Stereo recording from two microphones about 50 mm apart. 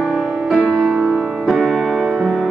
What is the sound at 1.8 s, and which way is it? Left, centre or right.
Music, centre.